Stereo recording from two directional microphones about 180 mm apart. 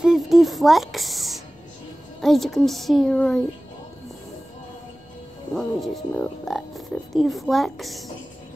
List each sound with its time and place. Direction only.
0.0 s a sound: centre (ahead or behind)
2.2 s speech: centre (ahead or behind)
5.5 s speech: centre (ahead or behind)